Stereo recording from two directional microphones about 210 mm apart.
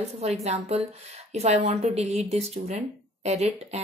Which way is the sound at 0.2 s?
30° right (ahead or behind).